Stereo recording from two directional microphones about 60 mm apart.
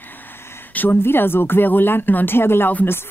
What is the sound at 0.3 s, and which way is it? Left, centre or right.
Speech, left.